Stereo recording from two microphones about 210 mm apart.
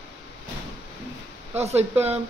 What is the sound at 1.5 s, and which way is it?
Speech, 30° right (ahead or behind).